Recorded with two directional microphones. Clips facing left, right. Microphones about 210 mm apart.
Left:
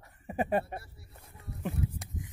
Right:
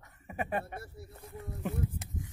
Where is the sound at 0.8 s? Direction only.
45° right (ahead or behind).